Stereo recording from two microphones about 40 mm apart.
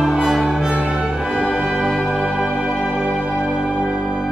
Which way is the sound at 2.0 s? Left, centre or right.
Right.